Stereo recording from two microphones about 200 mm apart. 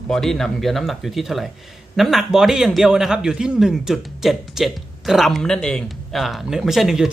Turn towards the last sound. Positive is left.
turn(degrees=0)  # may be behind; listen again after turning